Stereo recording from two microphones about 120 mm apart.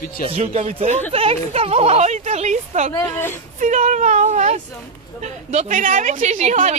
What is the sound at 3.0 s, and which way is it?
Speech, 20° left (ahead or behind).